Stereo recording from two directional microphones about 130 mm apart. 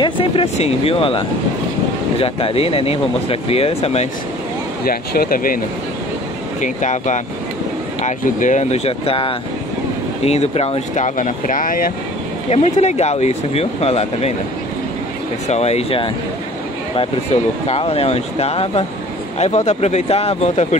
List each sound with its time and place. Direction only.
0.0 s speech: 45° left (ahead or behind)
5.3 s speech: 90° left
6.6 s speech: 70° left (ahead or behind); by 11.1 s 50° left (ahead or behind)
11.1 s speech: 80° left
12.4 s speech: 60° left (ahead or behind)
15.4 s speech: 55° left (ahead or behind)
17.6 s speech: 50° left (ahead or behind)